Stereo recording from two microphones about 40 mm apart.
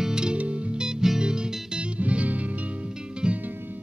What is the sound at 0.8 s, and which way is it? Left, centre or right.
Music, centre.